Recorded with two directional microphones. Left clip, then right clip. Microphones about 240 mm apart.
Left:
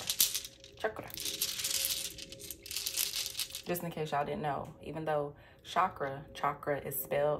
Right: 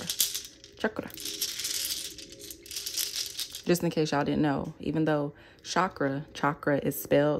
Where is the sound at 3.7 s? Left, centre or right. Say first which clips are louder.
Right 10 dB; right.